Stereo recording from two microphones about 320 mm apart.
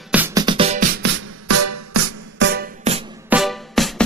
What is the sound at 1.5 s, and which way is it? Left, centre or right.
Music, right.